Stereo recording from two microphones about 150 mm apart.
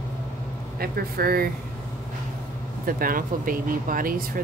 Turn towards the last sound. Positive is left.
turn(degrees=-70)  # may be behind; listen again after turning